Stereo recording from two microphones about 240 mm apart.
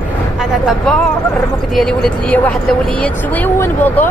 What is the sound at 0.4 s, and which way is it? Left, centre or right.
Speech, centre.